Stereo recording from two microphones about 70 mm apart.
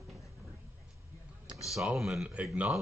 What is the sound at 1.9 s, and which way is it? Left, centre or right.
Speech, centre.